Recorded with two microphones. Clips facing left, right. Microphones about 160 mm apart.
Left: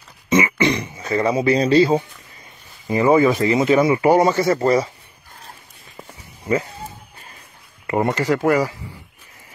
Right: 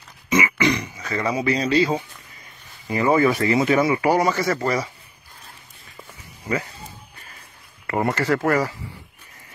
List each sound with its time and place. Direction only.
0.3 s speech: 30° left (ahead or behind)
2.9 s speech: 20° left (ahead or behind)
7.8 s speech: 20° left (ahead or behind)